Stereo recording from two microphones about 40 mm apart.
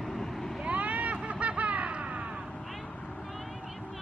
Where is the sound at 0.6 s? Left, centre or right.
Right.